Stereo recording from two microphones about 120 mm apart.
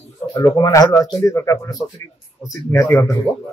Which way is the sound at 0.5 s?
30° left (ahead or behind).